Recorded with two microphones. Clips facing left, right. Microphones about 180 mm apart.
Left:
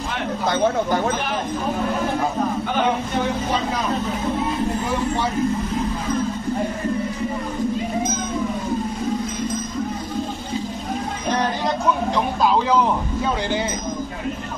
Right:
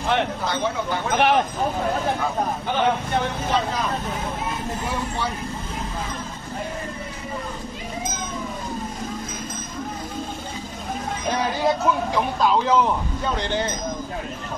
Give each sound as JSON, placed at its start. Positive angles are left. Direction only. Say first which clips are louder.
{"t": 1.1, "sound": "speech", "louder": "right 7 dB", "side_deg": -65}